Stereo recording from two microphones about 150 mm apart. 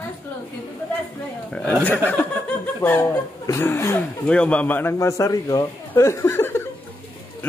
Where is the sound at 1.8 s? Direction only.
15° left (ahead or behind).